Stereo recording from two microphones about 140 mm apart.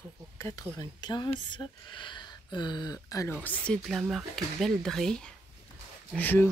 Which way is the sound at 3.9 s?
5° right (ahead or behind).